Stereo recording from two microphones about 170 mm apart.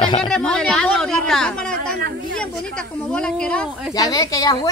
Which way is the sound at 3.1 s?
5° left (ahead or behind).